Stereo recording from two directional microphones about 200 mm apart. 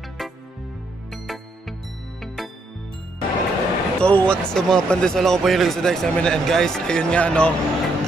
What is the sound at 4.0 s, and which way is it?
Speech, 5° left (ahead or behind).